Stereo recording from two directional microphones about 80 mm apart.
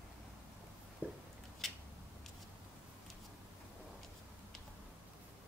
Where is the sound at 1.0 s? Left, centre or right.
Right.